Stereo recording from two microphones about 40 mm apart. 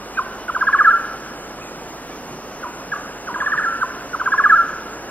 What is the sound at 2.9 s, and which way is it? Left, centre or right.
Owl, left.